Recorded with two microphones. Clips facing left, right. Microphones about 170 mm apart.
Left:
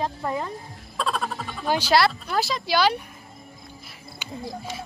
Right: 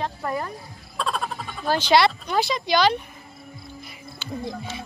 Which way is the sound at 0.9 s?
Centre (ahead or behind).